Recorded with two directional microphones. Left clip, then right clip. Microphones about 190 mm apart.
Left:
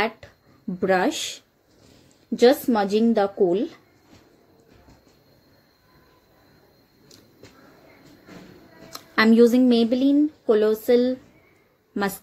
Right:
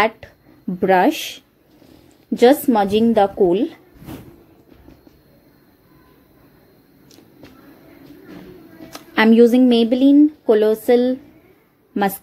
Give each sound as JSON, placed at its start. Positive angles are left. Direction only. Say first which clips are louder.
{"t": 0.0, "sound": "a woman's voice", "louder": "right 7 dB", "side_deg": -15}
{"t": 8.9, "sound": "a woman's voice", "louder": "right 4 dB", "side_deg": -10}